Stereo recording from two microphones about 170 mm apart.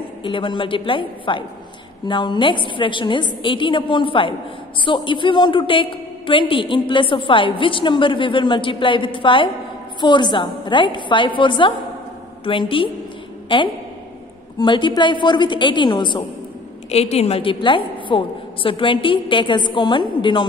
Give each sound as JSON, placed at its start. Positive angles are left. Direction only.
{"t": 0.2, "sound": "a woman's voice", "side_deg": 30}
{"t": 14.6, "sound": "a woman's voice", "side_deg": 30}
{"t": 16.9, "sound": "a woman's voice", "side_deg": 40}